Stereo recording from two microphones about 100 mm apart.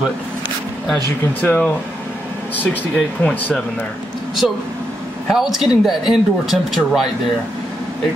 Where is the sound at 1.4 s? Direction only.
15° left (ahead or behind).